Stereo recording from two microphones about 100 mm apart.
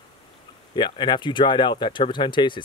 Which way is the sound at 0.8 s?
50° left (ahead or behind).